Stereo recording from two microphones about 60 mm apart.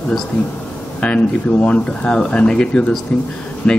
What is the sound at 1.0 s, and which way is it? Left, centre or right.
Speech, left.